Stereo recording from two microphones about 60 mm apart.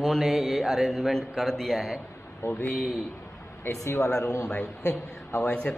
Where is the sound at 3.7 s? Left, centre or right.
Left.